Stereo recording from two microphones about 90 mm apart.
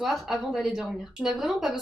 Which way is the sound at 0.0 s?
5° right (ahead or behind).